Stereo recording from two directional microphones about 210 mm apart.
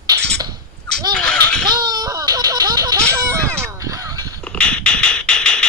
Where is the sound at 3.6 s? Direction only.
15° right (ahead or behind).